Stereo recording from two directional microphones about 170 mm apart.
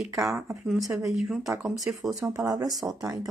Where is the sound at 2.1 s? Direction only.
20° right (ahead or behind).